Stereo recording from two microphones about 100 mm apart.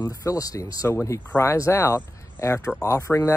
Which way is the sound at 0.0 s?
35° left (ahead or behind).